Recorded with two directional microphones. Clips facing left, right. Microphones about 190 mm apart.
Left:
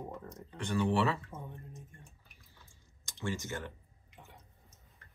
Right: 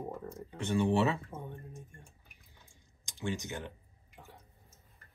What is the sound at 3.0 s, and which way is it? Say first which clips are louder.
Speech: right 1 dB; 15° right (ahead or behind).